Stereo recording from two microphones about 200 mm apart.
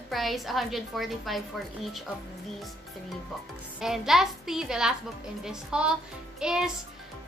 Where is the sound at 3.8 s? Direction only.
Centre (ahead or behind).